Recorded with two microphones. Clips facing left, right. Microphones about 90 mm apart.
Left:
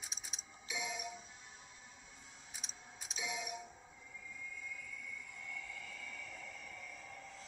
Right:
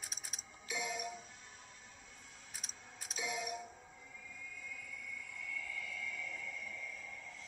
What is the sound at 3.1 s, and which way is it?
Music, centre (ahead or behind).